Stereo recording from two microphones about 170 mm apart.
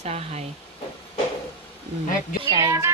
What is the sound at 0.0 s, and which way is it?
Speech, 40° right (ahead or behind).